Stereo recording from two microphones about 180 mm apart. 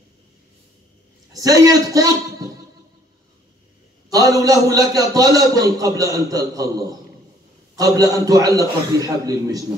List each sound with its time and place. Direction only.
1.3 s a man's voice: 20° right (ahead or behind)
4.1 s a man's voice: 20° right (ahead or behind)